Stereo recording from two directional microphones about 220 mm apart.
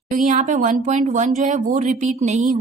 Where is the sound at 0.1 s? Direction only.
35° right (ahead or behind).